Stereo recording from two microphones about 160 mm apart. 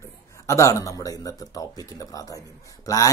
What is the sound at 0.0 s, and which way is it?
Speech, 20° left (ahead or behind).